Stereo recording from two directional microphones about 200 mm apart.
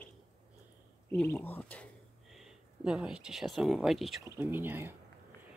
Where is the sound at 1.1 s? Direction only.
10° left (ahead or behind); by 4.9 s 10° right (ahead or behind).